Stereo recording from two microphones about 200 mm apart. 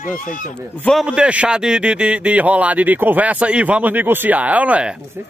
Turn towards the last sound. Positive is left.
turn(degrees=-5)  # may be behind; listen again after turning